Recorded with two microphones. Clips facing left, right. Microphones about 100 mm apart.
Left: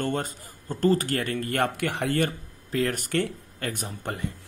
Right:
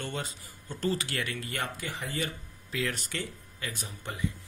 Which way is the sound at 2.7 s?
45° left (ahead or behind).